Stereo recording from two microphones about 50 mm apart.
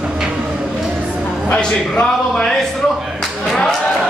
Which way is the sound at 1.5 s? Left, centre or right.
Centre.